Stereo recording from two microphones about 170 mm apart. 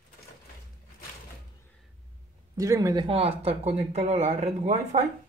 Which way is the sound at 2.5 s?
20° right (ahead or behind).